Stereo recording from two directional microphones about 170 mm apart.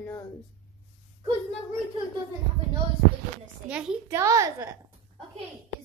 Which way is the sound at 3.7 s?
5° right (ahead or behind).